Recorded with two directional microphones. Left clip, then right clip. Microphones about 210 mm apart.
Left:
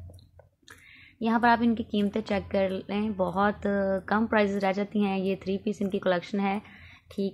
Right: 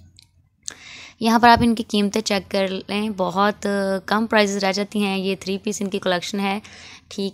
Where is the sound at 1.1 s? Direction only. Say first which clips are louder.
Right 9 dB; 40° right (ahead or behind).